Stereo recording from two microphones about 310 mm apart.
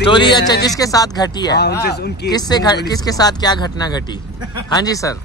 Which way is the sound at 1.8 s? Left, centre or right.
Left.